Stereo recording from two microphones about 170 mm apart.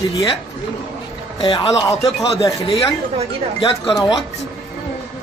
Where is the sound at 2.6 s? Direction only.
35° left (ahead or behind).